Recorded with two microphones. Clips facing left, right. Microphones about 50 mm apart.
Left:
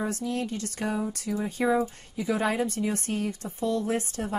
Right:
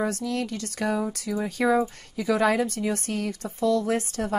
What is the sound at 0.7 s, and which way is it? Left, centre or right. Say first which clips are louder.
A woman's voice: right 3 dB; right.